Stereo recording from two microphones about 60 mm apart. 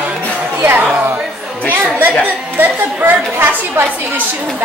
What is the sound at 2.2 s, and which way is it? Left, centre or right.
A woman's voice, right.